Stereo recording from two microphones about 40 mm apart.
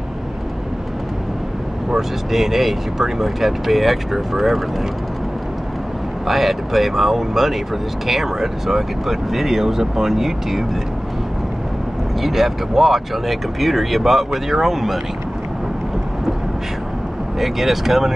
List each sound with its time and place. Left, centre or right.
1.9 s speech: centre
6.2 s speech: centre
12.2 s speech: centre
17.4 s speech: centre